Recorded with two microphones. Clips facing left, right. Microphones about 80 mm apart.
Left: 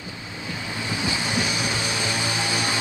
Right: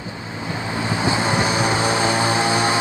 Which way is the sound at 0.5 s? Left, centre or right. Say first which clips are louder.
Right 6 dB; right.